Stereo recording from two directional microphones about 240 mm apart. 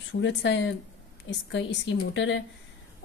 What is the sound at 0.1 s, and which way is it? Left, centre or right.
Speech, left.